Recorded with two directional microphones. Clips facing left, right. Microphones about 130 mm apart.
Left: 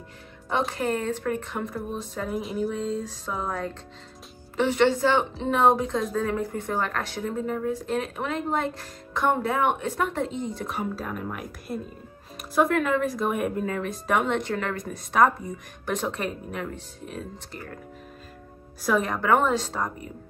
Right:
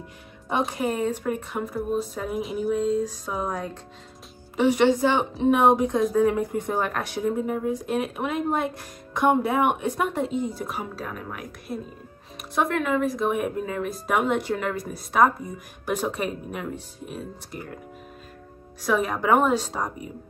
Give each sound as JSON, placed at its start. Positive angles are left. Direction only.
{"t": 0.6, "sound": "a woman's voice", "side_deg": -10}
{"t": 18.9, "sound": "speech", "side_deg": -5}